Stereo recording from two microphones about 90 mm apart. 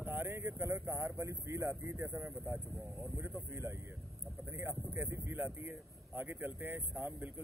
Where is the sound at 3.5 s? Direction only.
30° right (ahead or behind).